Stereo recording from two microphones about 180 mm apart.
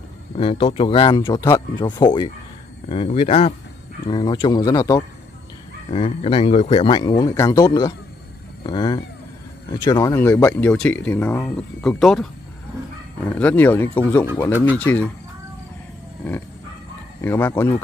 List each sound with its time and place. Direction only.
0.4 s speech: 30° left (ahead or behind)
4.1 s speech: 25° left (ahead or behind)
5.9 s speech: 30° left (ahead or behind)
10.1 s speech: 10° left (ahead or behind)
13.3 s speech: 10° left (ahead or behind)
17.2 s speech: 10° left (ahead or behind)